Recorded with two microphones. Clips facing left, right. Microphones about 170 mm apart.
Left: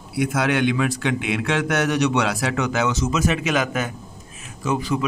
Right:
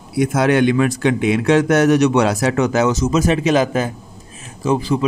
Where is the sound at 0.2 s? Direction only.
45° right (ahead or behind).